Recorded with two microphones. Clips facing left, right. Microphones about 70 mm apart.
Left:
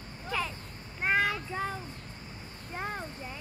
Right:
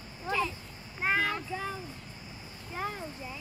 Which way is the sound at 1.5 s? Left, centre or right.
Left.